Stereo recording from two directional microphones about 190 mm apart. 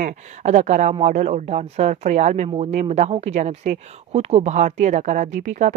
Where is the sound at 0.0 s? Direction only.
40° right (ahead or behind).